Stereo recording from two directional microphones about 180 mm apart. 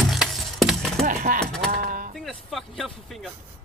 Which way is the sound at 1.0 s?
50° right (ahead or behind).